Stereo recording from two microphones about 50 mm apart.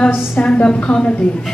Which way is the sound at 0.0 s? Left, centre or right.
Left.